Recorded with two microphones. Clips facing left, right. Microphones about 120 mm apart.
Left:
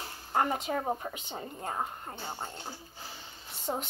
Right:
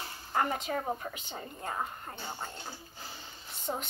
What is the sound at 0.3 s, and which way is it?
A woman's voice, 25° left (ahead or behind).